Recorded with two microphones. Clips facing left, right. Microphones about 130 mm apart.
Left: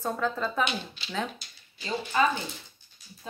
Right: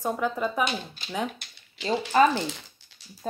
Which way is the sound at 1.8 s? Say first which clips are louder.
Right 8 dB; 90° right.